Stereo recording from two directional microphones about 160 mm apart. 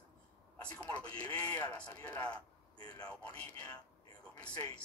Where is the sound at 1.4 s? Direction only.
25° left (ahead or behind).